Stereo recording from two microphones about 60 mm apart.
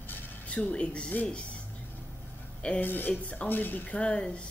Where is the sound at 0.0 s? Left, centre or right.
Left.